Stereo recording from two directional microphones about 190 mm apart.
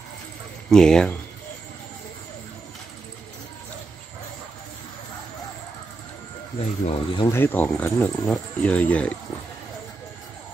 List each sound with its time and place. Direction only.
0.7 s speech: 5° left (ahead or behind)
6.6 s speech: 35° left (ahead or behind)
7.2 s speech: 10° left (ahead or behind)